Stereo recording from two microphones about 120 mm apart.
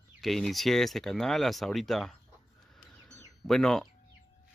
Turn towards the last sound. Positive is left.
turn(degrees=5)  # may be behind; listen again after turning